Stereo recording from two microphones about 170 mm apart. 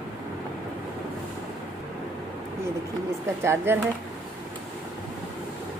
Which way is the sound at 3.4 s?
15° right (ahead or behind).